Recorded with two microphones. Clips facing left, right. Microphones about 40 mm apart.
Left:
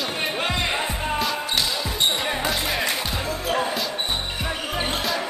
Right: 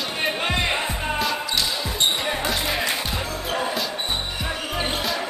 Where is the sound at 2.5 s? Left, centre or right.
Centre.